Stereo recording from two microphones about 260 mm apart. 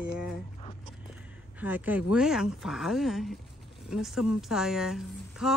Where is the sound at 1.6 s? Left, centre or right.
Centre.